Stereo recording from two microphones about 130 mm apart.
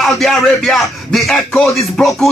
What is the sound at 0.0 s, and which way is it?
Speech, centre (ahead or behind).